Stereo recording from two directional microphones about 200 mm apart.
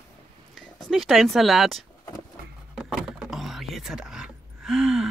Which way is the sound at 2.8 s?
Centre (ahead or behind).